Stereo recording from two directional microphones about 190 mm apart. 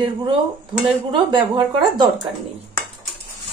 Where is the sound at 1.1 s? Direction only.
25° right (ahead or behind).